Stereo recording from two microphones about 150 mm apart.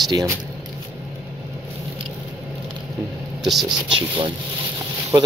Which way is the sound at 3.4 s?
Centre (ahead or behind).